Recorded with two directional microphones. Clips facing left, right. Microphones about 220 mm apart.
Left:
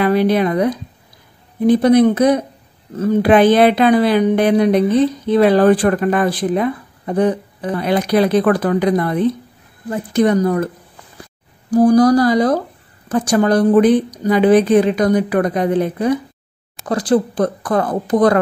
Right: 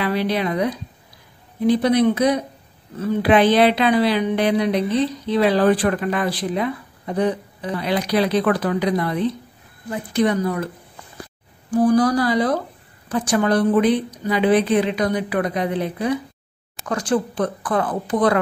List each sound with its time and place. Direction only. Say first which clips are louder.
0.0 s a woman's voice: left 7 dB; 50° left (ahead or behind)
11.7 s a woman's voice: left 6 dB; 40° left (ahead or behind)
16.8 s speech: left 6 dB; 35° left (ahead or behind)